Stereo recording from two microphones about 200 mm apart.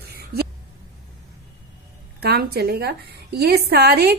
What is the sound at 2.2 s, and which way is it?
A woman's voice, 50° right (ahead or behind).